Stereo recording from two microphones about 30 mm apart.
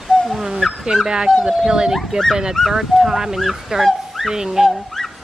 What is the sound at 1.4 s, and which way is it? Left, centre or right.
Speech, right.